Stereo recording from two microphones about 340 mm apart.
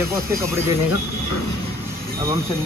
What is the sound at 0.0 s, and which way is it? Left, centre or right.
Speech, centre.